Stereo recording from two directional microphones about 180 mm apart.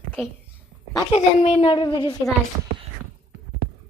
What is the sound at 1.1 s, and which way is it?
A woman's voice, 35° left (ahead or behind).